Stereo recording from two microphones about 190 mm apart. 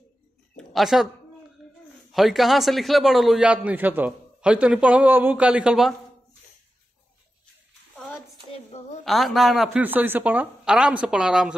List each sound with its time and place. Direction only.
0.6 s a woman's voice: centre (ahead or behind)
2.1 s a man's voice: centre (ahead or behind)
8.5 s a woman's voice: 35° left (ahead or behind)
9.0 s a man's voice: centre (ahead or behind)